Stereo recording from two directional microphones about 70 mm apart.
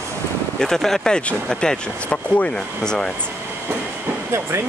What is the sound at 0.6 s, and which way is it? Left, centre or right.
Speech, centre.